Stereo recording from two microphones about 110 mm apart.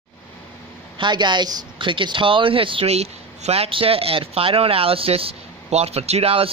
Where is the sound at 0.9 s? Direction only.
45° right (ahead or behind).